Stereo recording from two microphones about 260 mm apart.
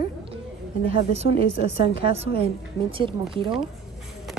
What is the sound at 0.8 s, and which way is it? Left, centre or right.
A woman's voice, right.